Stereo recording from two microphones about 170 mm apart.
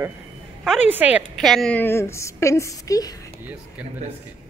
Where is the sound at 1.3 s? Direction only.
Centre (ahead or behind); by 3.2 s 20° left (ahead or behind).